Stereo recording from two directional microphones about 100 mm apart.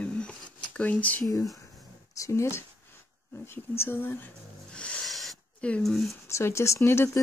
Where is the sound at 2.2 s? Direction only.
30° left (ahead or behind).